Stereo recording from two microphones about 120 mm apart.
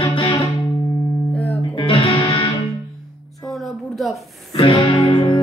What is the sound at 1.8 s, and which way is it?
Music, 50° left (ahead or behind).